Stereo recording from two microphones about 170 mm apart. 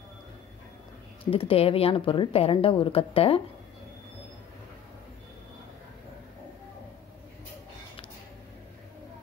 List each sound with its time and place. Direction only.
1.2 s speech: 30° left (ahead or behind)